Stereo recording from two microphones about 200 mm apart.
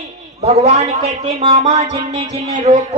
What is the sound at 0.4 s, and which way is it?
A man's voice, 30° right (ahead or behind).